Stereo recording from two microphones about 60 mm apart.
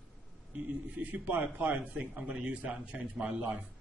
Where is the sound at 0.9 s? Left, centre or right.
Right.